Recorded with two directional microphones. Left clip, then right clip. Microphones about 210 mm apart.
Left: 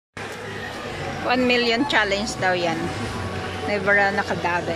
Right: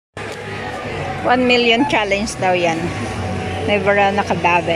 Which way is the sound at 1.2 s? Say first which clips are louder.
Right 6 dB; 5° right (ahead or behind).